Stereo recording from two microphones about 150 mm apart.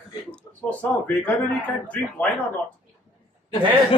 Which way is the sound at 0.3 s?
10° left (ahead or behind).